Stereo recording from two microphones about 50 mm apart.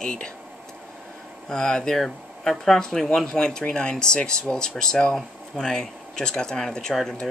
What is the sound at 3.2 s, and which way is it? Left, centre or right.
Speech, centre.